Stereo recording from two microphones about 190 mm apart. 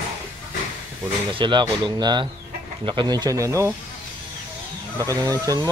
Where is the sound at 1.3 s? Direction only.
25° right (ahead or behind).